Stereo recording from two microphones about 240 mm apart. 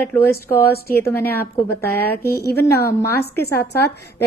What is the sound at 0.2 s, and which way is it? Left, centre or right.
Speech, left.